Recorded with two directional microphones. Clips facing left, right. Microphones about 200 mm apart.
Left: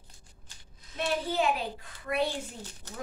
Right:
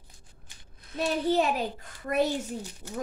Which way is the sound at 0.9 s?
40° right (ahead or behind).